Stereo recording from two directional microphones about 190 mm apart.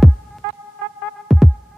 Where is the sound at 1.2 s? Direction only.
Centre (ahead or behind).